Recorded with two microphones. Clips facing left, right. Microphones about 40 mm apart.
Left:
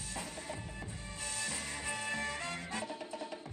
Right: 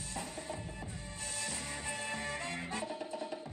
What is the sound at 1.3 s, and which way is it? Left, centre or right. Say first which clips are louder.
Music: left 1 dB; left.